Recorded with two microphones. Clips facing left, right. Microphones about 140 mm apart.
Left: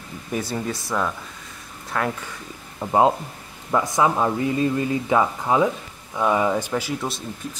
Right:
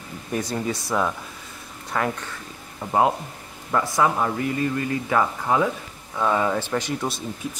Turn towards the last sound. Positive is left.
turn(degrees=5)  # may be behind; listen again after turning